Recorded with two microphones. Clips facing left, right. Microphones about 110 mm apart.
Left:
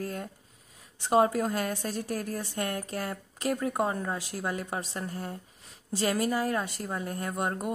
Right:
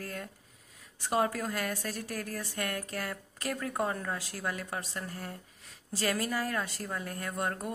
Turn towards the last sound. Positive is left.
turn(degrees=20)  # may be behind; listen again after turning